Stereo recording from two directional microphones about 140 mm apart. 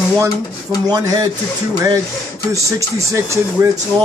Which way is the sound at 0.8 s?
25° right (ahead or behind).